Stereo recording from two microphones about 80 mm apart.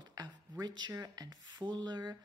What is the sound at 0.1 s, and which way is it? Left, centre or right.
A woman's voice, right.